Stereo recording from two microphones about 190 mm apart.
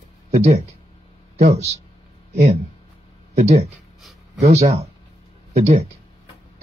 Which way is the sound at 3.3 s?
35° right (ahead or behind).